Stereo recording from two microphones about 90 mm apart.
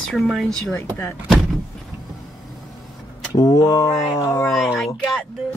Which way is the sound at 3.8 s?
30° left (ahead or behind).